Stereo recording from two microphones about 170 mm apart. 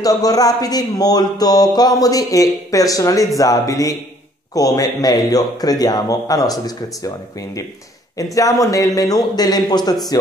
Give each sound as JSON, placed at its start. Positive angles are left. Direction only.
{"t": 0.0, "sound": "speech", "side_deg": 20}